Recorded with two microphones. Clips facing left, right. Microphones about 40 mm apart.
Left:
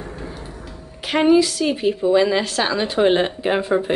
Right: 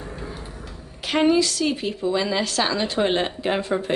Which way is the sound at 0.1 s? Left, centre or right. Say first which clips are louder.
Left 2 dB; centre.